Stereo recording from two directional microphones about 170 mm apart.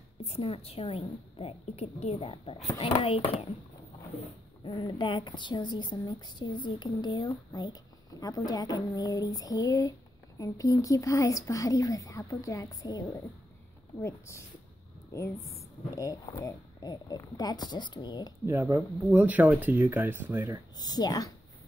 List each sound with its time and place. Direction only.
0.2 s a woman's voice: 35° left (ahead or behind)
4.6 s a woman's voice: 30° left (ahead or behind)
14.0 s a woman's voice: 15° left (ahead or behind)
18.4 s speech: 15° right (ahead or behind)
20.7 s a woman's voice: 25° left (ahead or behind)